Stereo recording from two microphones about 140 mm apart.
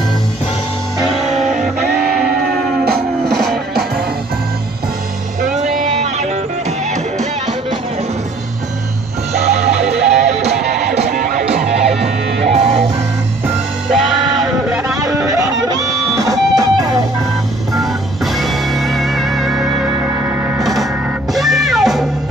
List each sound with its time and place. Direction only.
3.3 s music: 5° left (ahead or behind)
5.4 s music: 55° right (ahead or behind)
9.3 s music: 50° right (ahead or behind)
11.1 s music: 90° right
11.4 s music: 50° right (ahead or behind)
13.8 s music: centre (ahead or behind)
15.7 s music: 25° right (ahead or behind)
17.7 s music: centre (ahead or behind)
20.6 s music: centre (ahead or behind)